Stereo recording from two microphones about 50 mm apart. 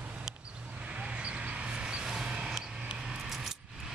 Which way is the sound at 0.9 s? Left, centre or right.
Right.